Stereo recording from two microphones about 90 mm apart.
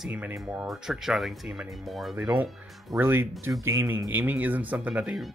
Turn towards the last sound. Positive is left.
turn(degrees=-15)  # may be behind; listen again after turning